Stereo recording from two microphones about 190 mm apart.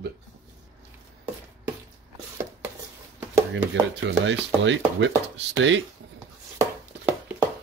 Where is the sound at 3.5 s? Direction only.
75° right (ahead or behind).